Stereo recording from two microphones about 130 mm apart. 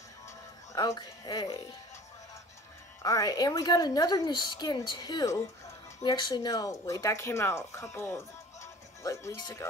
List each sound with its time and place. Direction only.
0.7 s a woman's voice: 30° left (ahead or behind)
3.0 s a woman's voice: 25° left (ahead or behind)